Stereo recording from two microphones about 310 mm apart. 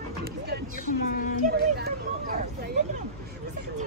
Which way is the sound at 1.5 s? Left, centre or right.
Right.